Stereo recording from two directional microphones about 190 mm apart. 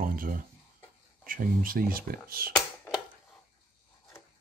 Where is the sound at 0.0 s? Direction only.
50° right (ahead or behind).